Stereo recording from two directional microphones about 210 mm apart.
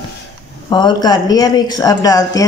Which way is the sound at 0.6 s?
20° left (ahead or behind).